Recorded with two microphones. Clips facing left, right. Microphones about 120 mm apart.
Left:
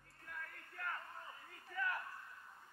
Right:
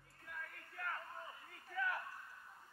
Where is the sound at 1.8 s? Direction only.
Centre (ahead or behind).